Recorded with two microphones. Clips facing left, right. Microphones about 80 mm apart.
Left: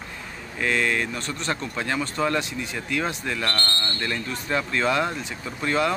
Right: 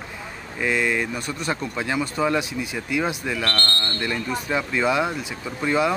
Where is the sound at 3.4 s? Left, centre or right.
Centre.